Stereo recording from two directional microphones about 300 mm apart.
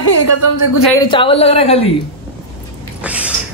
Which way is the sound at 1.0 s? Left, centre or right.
Centre.